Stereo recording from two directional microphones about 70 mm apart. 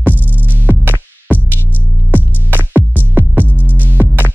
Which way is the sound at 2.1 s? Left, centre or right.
Right.